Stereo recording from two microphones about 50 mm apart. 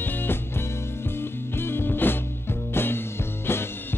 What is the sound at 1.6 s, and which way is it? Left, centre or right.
Music, left.